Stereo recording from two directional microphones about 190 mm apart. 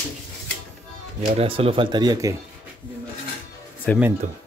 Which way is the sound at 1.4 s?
30° right (ahead or behind).